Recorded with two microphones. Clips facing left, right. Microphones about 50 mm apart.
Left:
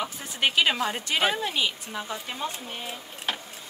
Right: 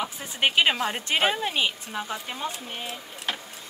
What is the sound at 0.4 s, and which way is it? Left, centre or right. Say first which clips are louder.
Speech: right 1 dB; right.